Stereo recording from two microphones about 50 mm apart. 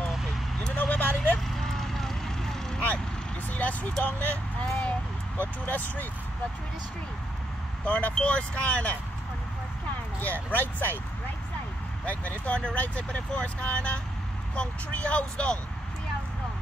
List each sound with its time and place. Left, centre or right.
0.7 s vehicle: left
1.5 s vehicle: centre
3.4 s vehicle: left
4.0 s speech: left
7.8 s speech: left
10.2 s speech: left
12.1 s speech: left